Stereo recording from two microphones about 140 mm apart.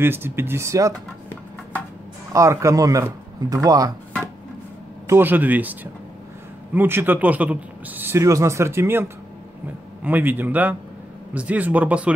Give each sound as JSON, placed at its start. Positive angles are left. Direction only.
{"t": 0.0, "sound": "speech", "side_deg": -15}
{"t": 2.3, "sound": "speech", "side_deg": -20}
{"t": 5.0, "sound": "speech", "side_deg": -15}